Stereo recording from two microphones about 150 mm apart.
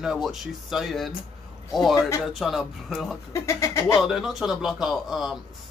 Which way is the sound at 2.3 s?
Centre (ahead or behind).